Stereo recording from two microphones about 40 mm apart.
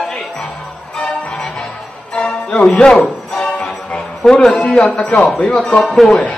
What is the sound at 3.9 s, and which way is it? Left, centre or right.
Music, centre.